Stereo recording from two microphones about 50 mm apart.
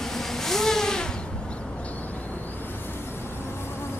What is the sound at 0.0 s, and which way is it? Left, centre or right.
Vehicle, centre.